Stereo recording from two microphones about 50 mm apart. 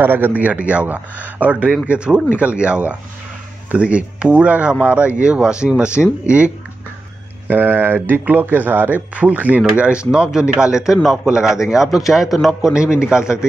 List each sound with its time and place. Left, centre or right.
0.0 s speech: right
1.9 s speech: centre
7.4 s a man's voice: right; by 12.7 s centre
12.7 s a man's voice: centre